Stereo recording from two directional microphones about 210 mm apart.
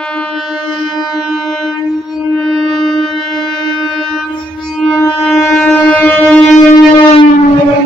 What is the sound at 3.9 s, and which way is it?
Wind instrument, centre (ahead or behind).